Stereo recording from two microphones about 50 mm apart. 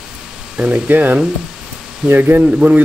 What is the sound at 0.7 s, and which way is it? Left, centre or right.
Speech, right.